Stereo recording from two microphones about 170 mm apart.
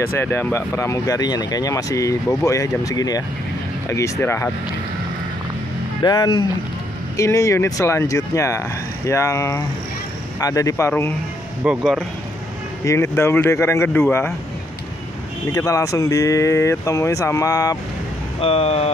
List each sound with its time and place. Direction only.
0.2 s speech: 10° left (ahead or behind)
6.0 s speech: 25° left (ahead or behind)
11.6 s speech: 5° right (ahead or behind)
12.8 s speech: 15° left (ahead or behind)
15.5 s speech: 20° left (ahead or behind)
18.4 s speech: 35° left (ahead or behind)